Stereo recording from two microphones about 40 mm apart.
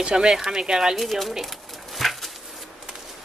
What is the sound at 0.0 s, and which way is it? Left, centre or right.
Speech, centre.